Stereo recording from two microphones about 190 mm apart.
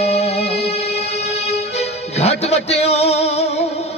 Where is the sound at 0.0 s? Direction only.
35° left (ahead or behind).